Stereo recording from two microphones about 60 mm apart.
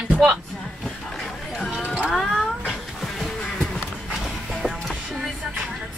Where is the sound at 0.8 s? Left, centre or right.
Centre.